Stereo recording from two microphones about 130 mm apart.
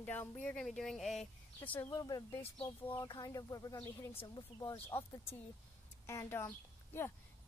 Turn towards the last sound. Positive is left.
turn(degrees=20)  # may be behind; listen again after turning